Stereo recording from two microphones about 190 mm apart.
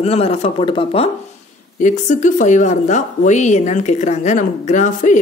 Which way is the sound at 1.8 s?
40° left (ahead or behind).